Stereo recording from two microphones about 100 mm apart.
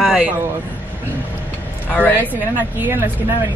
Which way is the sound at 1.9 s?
15° left (ahead or behind).